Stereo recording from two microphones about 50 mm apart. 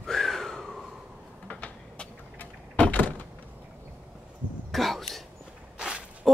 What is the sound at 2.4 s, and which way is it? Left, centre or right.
Door, left.